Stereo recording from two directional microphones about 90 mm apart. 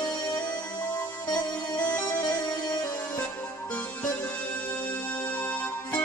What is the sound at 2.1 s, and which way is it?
Music, 50° left (ahead or behind).